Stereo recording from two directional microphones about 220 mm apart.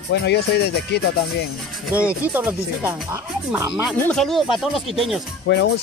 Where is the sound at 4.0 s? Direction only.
5° left (ahead or behind).